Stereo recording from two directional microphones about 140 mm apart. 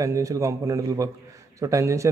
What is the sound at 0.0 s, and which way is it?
A man's voice, 25° right (ahead or behind).